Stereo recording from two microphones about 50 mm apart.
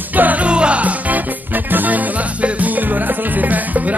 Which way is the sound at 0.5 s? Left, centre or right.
Right.